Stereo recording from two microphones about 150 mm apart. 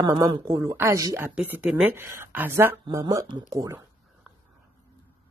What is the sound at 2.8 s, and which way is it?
Speech, 25° right (ahead or behind).